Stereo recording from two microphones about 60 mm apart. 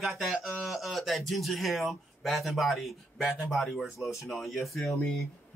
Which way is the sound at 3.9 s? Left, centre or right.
Left.